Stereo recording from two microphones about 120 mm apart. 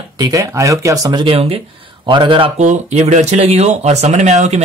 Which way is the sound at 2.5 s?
75° right (ahead or behind).